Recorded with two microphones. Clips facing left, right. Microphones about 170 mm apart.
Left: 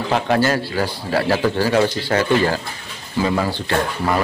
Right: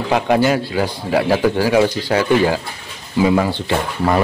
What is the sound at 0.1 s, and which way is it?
A man's voice, 15° right (ahead or behind).